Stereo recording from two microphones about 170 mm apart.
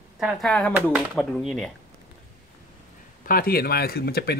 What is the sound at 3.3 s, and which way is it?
Speech, 60° left (ahead or behind).